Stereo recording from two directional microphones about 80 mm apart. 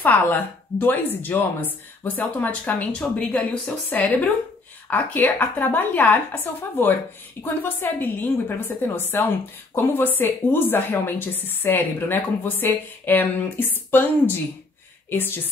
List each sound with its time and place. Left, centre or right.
0.0 s a woman's voice: left
15.0 s speech: left